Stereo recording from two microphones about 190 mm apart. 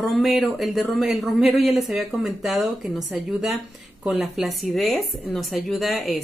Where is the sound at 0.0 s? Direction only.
Centre (ahead or behind).